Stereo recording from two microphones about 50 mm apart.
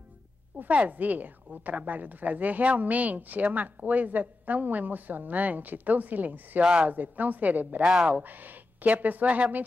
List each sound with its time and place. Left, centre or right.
0.6 s a woman's voice: right
6.6 s speech: centre
6.9 s a woman's voice: right
7.8 s speech: centre
8.2 s a woman's voice: right